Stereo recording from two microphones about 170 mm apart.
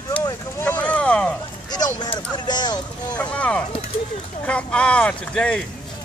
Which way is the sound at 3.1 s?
5° left (ahead or behind).